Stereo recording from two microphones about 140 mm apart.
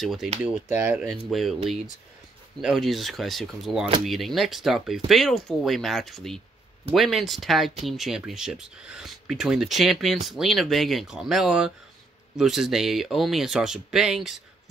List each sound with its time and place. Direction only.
0.0 s speech: centre (ahead or behind)
2.6 s speech: centre (ahead or behind)